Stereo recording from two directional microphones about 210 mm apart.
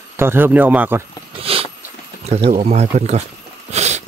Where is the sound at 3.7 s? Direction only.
30° right (ahead or behind).